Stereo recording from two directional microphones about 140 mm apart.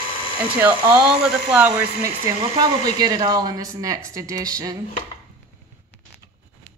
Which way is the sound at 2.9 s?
30° right (ahead or behind).